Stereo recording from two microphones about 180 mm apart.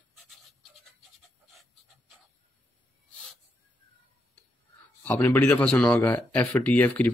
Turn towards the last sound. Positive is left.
turn(degrees=10)  # may be behind; listen again after turning